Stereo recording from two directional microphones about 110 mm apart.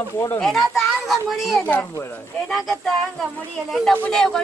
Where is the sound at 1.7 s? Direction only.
20° left (ahead or behind).